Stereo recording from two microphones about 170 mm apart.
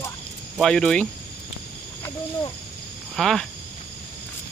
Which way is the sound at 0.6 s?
Centre (ahead or behind).